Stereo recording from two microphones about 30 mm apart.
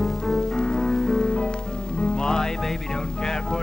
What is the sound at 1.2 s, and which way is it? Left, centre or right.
Music, left.